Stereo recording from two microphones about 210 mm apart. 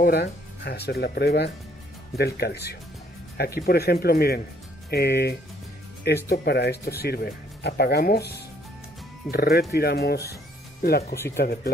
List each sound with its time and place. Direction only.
0.0 s speech: 50° left (ahead or behind)